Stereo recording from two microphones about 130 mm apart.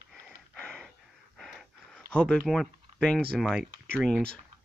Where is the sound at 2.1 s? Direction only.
10° left (ahead or behind).